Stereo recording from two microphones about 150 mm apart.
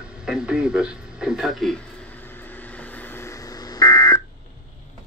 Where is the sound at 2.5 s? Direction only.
10° left (ahead or behind).